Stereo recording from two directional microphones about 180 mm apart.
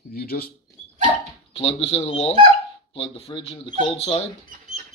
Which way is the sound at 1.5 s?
35° left (ahead or behind).